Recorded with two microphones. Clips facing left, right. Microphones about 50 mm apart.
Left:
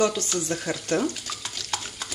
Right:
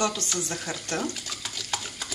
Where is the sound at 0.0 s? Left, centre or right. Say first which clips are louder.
Left 4 dB; left.